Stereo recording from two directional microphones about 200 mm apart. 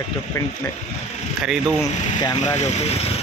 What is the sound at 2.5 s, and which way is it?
Speech, 35° left (ahead or behind).